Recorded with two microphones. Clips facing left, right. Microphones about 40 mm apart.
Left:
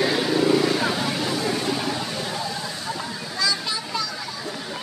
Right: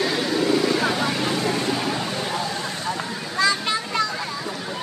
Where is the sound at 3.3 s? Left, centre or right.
Right.